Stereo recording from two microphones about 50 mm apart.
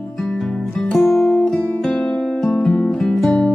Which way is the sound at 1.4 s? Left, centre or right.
Centre.